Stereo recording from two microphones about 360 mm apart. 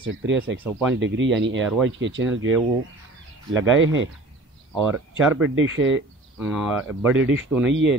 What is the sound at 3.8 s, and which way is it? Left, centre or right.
Speech, right.